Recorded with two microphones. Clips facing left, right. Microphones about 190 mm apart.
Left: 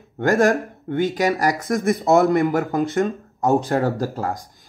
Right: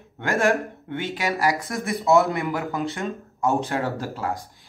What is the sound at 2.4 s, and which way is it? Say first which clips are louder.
Speech: left 6 dB; 40° left (ahead or behind).